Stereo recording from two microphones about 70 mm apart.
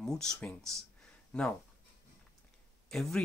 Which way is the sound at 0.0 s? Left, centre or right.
Centre.